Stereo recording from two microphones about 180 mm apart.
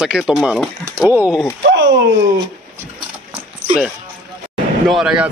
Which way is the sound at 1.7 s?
90° right.